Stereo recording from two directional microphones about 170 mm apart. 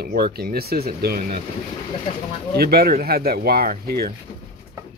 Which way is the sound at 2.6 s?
65° right (ahead or behind).